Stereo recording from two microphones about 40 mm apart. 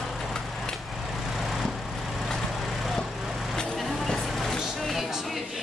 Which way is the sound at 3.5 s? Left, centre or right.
Centre.